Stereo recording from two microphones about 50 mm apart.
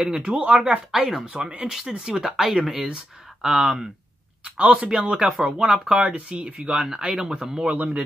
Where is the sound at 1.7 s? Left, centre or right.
Centre.